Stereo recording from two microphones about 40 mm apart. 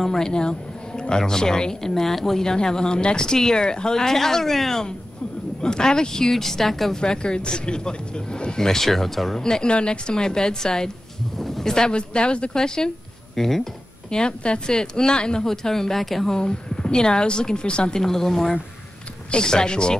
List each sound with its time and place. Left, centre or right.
0.0 s speech: centre
2.4 s speech: centre
7.0 s speech: left
9.4 s speech: centre
14.1 s speech: left; by 16.3 s centre
16.3 s speech: left
18.0 s speech: centre
19.3 s speech: centre